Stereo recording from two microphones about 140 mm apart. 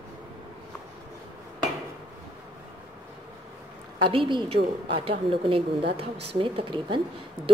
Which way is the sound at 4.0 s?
35° right (ahead or behind).